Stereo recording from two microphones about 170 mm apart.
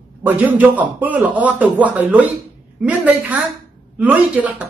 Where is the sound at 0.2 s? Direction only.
10° right (ahead or behind).